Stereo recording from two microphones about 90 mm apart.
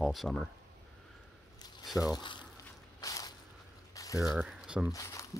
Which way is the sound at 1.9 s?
5° right (ahead or behind).